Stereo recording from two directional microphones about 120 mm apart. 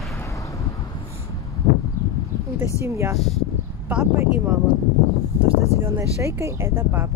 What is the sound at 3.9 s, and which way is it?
Speech, 10° right (ahead or behind).